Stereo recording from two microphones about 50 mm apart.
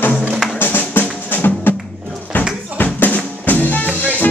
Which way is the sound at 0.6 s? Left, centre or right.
Left.